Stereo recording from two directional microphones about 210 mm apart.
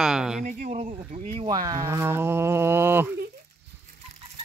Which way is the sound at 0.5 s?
35° right (ahead or behind).